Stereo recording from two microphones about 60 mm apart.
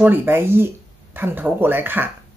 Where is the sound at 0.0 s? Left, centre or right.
Right.